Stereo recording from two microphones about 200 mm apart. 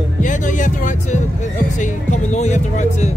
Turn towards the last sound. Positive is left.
turn(degrees=35)  # may be behind; listen again after turning